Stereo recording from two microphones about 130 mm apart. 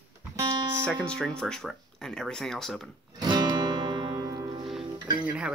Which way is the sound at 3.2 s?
35° right (ahead or behind).